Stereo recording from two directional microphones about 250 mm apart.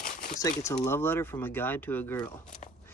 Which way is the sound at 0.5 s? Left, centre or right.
Centre.